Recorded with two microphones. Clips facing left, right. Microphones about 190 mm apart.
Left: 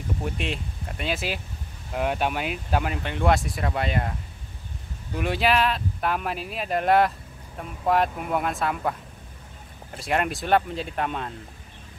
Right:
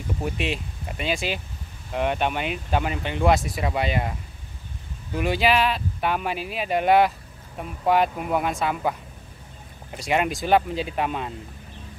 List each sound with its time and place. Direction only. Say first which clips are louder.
0.2 s speech: right 5 dB; 5° right (ahead or behind)
5.1 s speech: right 2 dB; centre (ahead or behind)
9.9 s speech: right 2 dB; centre (ahead or behind)